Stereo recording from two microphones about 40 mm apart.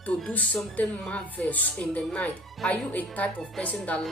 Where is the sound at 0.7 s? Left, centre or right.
Left.